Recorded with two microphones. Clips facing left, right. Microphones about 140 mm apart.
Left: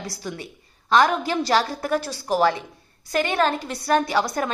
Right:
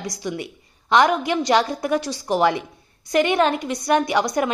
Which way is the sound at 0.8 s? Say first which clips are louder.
Right 2 dB; 15° right (ahead or behind).